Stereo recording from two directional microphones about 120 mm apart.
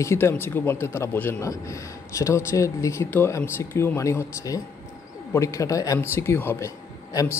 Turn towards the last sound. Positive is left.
turn(degrees=25)  # may be behind; listen again after turning